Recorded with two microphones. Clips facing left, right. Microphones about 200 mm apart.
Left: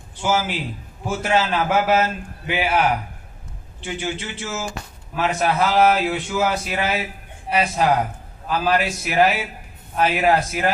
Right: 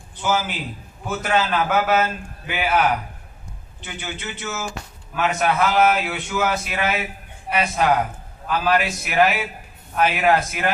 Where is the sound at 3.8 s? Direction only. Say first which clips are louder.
Left 6 dB; 30° left (ahead or behind).